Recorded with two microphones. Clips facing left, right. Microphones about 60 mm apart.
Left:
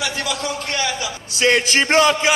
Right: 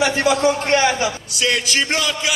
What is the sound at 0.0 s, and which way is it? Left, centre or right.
Speech, right.